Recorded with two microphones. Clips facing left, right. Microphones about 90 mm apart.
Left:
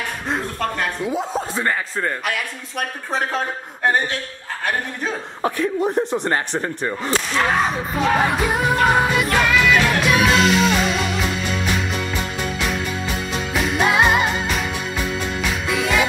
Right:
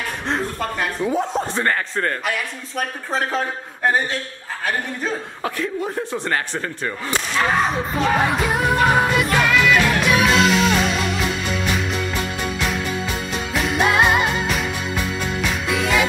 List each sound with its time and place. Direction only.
0.3 s a sound: centre (ahead or behind)
1.0 s a man's voice: 10° left (ahead or behind)
5.6 s speech: 20° left (ahead or behind)
7.2 s music: centre (ahead or behind)
13.5 s music: centre (ahead or behind)